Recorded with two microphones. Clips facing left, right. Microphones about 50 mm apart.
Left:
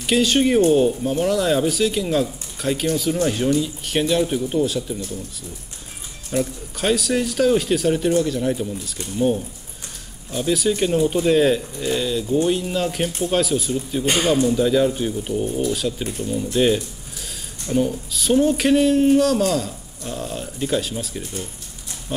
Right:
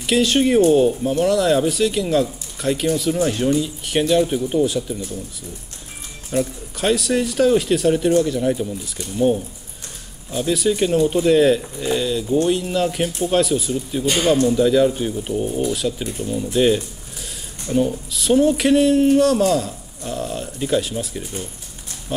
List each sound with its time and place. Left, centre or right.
0.0 s speech: centre
6.3 s speech: centre